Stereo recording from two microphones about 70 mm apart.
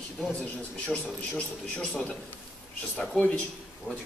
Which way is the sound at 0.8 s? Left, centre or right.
Centre.